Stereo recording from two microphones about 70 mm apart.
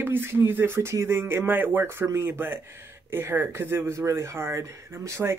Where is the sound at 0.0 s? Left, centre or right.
Right.